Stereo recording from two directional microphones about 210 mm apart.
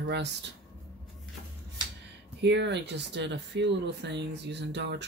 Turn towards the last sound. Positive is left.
turn(degrees=-55)  # may be behind; listen again after turning